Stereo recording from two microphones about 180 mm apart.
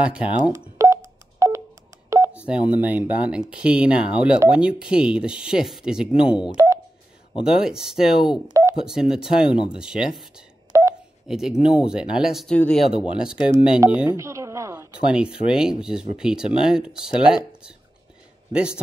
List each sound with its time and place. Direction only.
0.0 s speech: 5° right (ahead or behind)
0.5 s telephone dialing: 15° right (ahead or behind)
2.4 s speech: 5° right (ahead or behind)
6.5 s telephone dialing: 15° right (ahead or behind)
7.3 s speech: 5° right (ahead or behind)
8.5 s telephone dialing: 15° right (ahead or behind)
8.8 s speech: 5° right (ahead or behind)
10.7 s telephone dialing: 15° right (ahead or behind)
11.2 s speech: 5° right (ahead or behind)
15.4 s speech: 5° right (ahead or behind)
18.5 s a man's voice: 5° right (ahead or behind)